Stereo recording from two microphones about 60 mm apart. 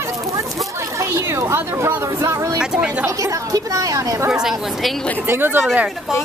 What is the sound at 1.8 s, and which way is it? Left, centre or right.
Speech, right.